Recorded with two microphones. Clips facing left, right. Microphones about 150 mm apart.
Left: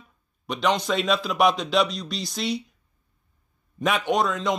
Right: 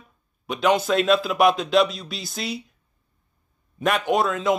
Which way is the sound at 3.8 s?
Centre (ahead or behind).